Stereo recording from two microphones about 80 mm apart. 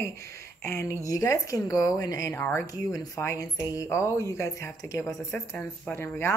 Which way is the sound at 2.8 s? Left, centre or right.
Left.